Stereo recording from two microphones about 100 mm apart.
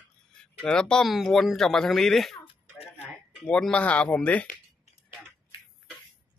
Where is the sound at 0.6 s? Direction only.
10° left (ahead or behind).